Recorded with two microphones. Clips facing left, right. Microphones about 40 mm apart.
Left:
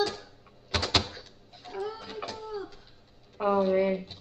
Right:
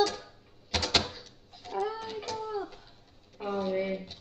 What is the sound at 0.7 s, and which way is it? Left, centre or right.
Door, centre.